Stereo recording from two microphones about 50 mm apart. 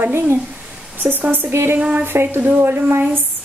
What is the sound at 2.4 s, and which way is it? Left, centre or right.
Speech, right.